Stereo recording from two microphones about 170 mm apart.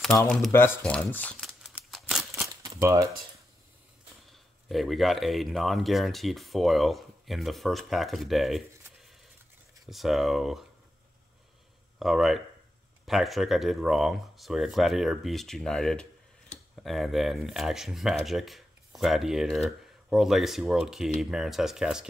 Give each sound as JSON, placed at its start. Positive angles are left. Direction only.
{"t": 0.1, "sound": "speech", "side_deg": 15}
{"t": 0.5, "sound": "a sound", "side_deg": 15}
{"t": 2.4, "sound": "typewriter", "side_deg": -20}
{"t": 2.8, "sound": "speech", "side_deg": -15}
{"t": 4.3, "sound": "speech", "side_deg": 0}
{"t": 12.0, "sound": "speech", "side_deg": 0}
{"t": 16.5, "sound": "tick-tock", "side_deg": 45}
{"t": 16.8, "sound": "speech", "side_deg": 0}